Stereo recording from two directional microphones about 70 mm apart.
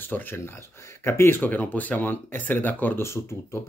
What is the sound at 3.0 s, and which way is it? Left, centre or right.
Speech, left.